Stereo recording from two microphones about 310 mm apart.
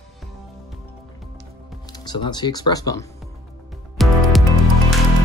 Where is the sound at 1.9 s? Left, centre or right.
Centre.